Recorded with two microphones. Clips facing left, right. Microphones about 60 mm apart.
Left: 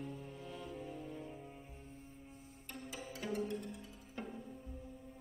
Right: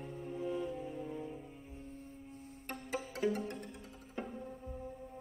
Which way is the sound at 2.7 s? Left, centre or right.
Right.